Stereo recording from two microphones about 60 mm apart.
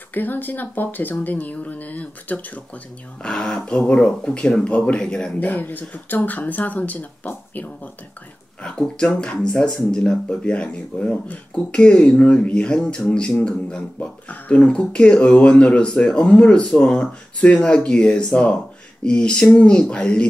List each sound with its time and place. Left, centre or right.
0.1 s speech: left
3.2 s speech: centre
5.5 s speech: left
8.6 s speech: centre